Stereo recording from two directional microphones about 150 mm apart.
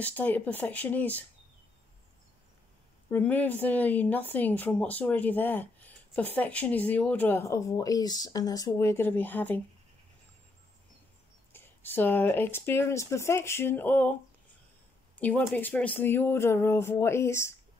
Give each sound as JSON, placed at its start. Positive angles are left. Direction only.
{"t": 0.0, "sound": "speech", "side_deg": 10}
{"t": 3.1, "sound": "speech", "side_deg": 10}
{"t": 11.5, "sound": "speech", "side_deg": 15}
{"t": 15.1, "sound": "speech", "side_deg": 10}